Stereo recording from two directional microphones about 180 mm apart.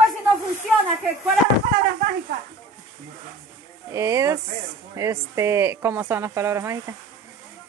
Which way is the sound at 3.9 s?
15° right (ahead or behind).